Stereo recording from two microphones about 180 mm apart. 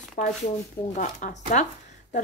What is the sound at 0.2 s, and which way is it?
A woman's voice, 50° left (ahead or behind).